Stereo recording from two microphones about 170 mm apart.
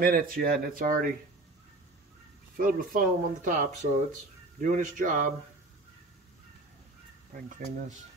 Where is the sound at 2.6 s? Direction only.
55° right (ahead or behind).